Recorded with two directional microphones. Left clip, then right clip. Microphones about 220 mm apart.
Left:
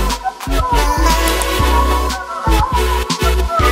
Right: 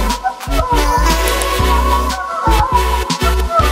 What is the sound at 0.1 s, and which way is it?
Music, centre (ahead or behind).